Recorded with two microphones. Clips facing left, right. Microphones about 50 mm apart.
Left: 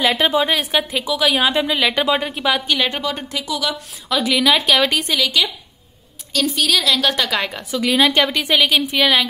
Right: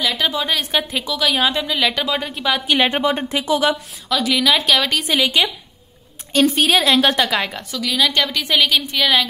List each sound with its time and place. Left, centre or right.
0.2 s a woman's voice: centre
0.7 s a woman's voice: centre
1.5 s a woman's voice: centre
2.8 s speech: right
4.3 s a woman's voice: centre
5.1 s a woman's voice: right
7.2 s a woman's voice: centre
7.7 s a woman's voice: left
8.5 s a woman's voice: centre